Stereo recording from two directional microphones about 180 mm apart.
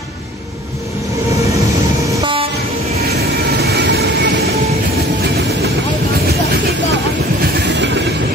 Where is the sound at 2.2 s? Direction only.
35° right (ahead or behind).